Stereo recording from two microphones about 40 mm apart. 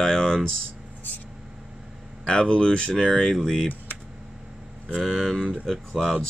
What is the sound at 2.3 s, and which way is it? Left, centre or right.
Speech, left.